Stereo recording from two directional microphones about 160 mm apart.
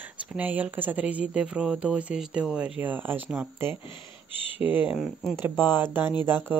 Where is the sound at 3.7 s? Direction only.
30° left (ahead or behind).